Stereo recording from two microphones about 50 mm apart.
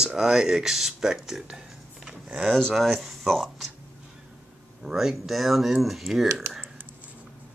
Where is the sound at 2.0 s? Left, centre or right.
Centre.